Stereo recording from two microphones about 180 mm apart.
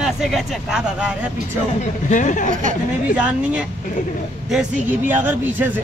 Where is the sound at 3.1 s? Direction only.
5° right (ahead or behind).